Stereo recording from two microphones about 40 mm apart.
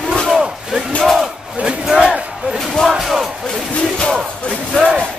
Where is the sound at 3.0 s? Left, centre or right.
Centre.